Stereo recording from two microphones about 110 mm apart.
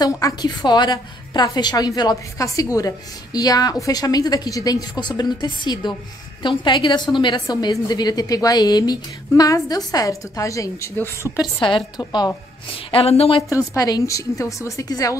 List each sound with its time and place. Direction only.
0.0 s a woman's voice: 35° left (ahead or behind)
11.6 s a woman's voice: 45° left (ahead or behind)
12.9 s speech: 65° left (ahead or behind)
13.4 s a woman's voice: 30° left (ahead or behind)